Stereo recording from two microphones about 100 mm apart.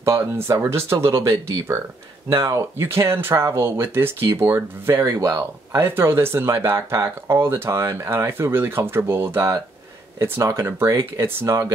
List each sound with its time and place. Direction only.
0.0 s speech: 30° right (ahead or behind)